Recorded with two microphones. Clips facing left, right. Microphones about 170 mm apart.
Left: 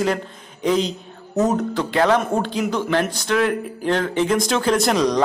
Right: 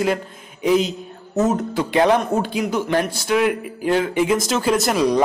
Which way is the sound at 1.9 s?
15° right (ahead or behind).